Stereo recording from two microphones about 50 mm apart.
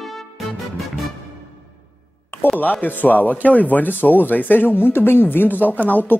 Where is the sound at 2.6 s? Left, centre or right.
Left.